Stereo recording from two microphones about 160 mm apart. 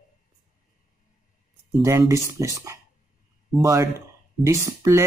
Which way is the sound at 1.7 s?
20° right (ahead or behind).